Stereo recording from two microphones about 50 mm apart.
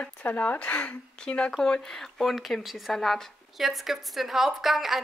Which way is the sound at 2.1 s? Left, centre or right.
Centre.